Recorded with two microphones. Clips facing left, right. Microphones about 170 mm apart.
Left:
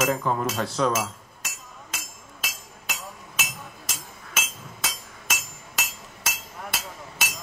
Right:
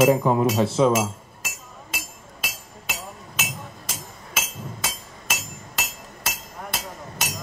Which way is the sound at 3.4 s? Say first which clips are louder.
Right 4 dB; 30° right (ahead or behind).